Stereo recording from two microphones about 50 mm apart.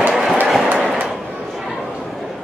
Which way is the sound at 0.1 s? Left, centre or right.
Centre.